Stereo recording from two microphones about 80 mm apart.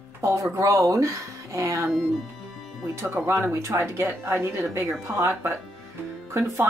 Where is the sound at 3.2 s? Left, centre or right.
Right.